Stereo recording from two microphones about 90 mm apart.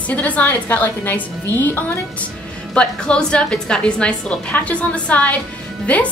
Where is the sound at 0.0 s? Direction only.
15° left (ahead or behind).